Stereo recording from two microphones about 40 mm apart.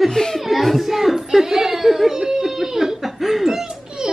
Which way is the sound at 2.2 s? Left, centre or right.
Centre.